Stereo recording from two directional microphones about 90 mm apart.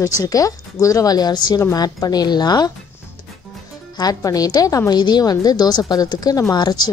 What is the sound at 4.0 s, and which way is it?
A woman's voice, 45° left (ahead or behind).